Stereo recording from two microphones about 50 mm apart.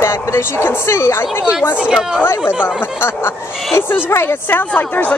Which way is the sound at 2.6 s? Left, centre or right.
Left.